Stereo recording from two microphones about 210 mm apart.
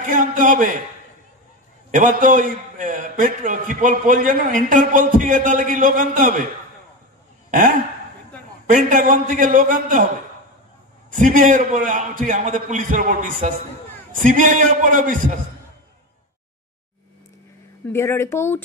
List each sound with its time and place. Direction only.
0.0 s a man's voice: 40° right (ahead or behind)
1.9 s a man's voice: 40° right (ahead or behind)
8.6 s a man's voice: 40° right (ahead or behind)
11.1 s a man's voice: 40° right (ahead or behind)
17.8 s speech: 10° left (ahead or behind)